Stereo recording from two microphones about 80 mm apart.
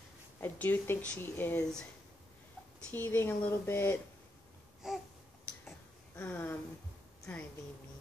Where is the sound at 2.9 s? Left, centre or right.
Left.